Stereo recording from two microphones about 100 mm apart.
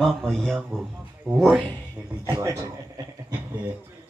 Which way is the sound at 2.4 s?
30° right (ahead or behind).